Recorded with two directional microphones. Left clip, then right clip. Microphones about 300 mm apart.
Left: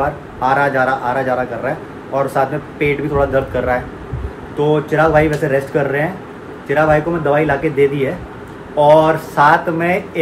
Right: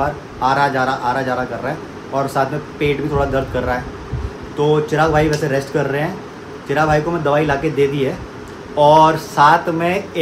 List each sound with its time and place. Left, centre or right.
0.4 s speech: centre